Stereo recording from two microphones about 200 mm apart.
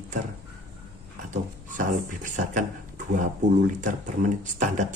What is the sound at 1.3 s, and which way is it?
Speech, 40° right (ahead or behind).